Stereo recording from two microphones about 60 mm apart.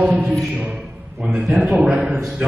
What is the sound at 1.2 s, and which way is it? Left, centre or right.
A man's voice, centre.